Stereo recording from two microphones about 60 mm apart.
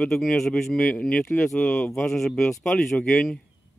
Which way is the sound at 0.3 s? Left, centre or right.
Centre.